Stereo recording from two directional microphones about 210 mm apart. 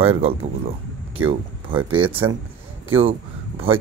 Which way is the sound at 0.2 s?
30° right (ahead or behind).